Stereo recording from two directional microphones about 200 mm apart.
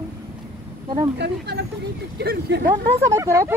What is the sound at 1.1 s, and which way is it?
Speech, 60° right (ahead or behind).